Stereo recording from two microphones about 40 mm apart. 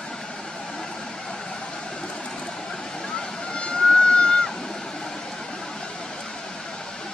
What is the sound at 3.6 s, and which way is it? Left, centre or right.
Vehicle, left.